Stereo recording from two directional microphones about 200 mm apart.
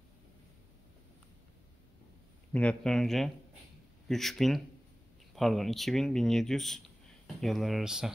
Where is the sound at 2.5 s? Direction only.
5° left (ahead or behind).